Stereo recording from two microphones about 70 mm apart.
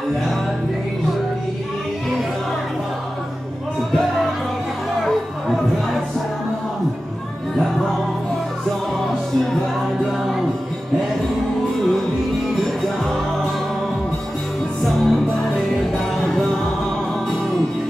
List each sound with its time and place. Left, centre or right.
5.0 s music: centre
10.0 s music: centre
14.8 s music: centre